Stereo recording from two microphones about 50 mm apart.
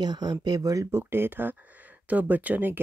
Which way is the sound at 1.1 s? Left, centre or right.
Right.